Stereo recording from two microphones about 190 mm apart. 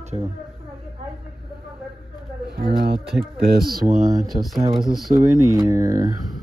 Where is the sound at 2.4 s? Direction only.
55° right (ahead or behind); by 5.2 s 30° right (ahead or behind).